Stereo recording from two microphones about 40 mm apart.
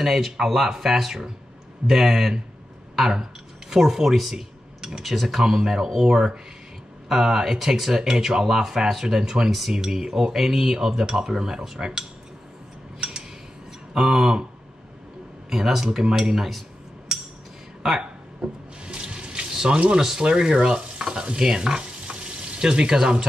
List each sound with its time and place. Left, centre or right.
0.0 s speech: centre
13.0 s a sound: centre
13.9 s speech: centre
15.5 s speech: centre
18.4 s speech: centre
18.9 s water tap: right
19.5 s a sound: centre
20.0 s speech: centre
20.2 s stir: right
21.4 s frying: centre
22.9 s stir: right